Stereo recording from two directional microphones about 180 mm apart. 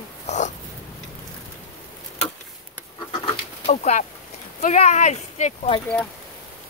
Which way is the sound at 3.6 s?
40° left (ahead or behind).